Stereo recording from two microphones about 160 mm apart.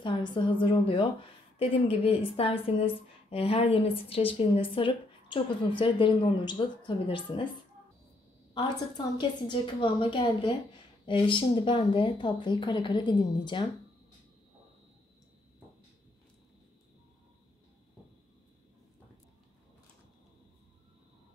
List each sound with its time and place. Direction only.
0.0 s a woman's voice: 30° left (ahead or behind)
8.5 s speech: 25° left (ahead or behind)